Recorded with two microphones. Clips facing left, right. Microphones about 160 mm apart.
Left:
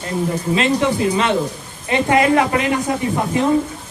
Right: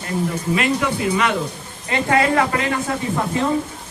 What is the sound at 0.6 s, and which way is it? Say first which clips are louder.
A man's voice: left 4 dB; 25° left (ahead or behind).